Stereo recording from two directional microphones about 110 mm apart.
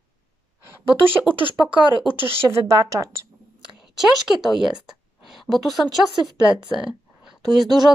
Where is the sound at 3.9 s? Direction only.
5° right (ahead or behind).